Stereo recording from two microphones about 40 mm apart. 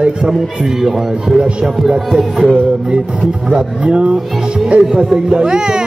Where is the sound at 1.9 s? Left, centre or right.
Centre.